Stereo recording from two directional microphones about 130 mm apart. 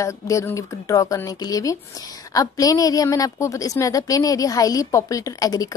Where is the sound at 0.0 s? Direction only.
25° left (ahead or behind).